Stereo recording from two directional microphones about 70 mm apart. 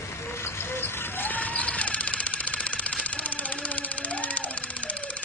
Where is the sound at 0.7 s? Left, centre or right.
Left.